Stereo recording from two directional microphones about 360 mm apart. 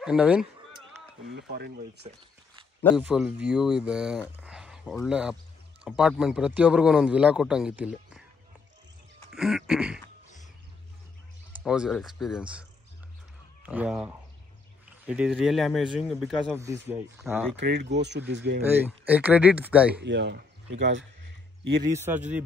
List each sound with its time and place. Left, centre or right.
0.0 s a sound: centre
1.3 s speech: right
2.8 s speech: centre
9.3 s throat clearing: centre
11.6 s speech: centre
13.7 s speech: centre
17.6 s speech: right
18.7 s speech: centre
20.0 s speech: right
21.8 s speech: centre